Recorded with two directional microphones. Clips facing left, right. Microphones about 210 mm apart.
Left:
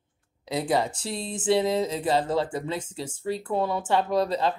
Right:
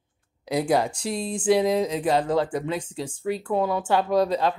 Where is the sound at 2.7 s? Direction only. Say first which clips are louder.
Right 3 dB; 25° left (ahead or behind).